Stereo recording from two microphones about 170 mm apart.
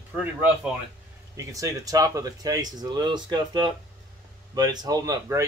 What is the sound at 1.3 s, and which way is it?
Speech, 20° right (ahead or behind).